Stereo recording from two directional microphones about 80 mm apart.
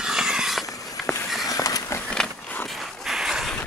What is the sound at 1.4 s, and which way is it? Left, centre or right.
Vehicle, left.